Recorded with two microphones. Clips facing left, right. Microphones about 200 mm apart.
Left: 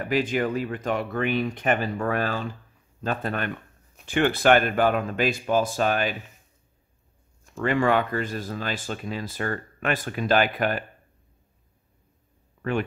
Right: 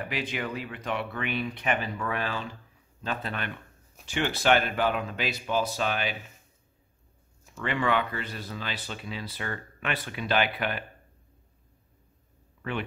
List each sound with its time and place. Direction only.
0.0 s speech: 45° left (ahead or behind)
7.5 s speech: 45° left (ahead or behind)